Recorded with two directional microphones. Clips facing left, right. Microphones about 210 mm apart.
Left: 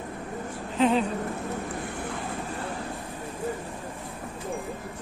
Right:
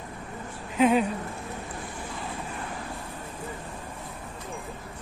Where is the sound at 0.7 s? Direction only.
10° right (ahead or behind).